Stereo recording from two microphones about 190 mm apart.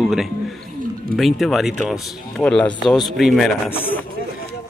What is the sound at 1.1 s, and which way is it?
Speech, centre (ahead or behind).